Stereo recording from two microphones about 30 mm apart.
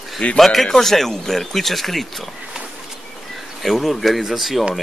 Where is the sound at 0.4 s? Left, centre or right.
Centre.